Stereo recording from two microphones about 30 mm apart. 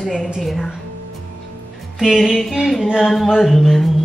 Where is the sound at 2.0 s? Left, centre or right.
Centre.